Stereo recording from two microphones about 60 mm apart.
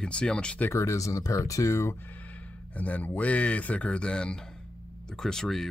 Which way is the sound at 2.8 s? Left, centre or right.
Left.